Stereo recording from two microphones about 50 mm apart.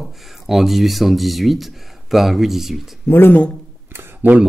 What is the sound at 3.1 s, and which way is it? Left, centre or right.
Speech, left.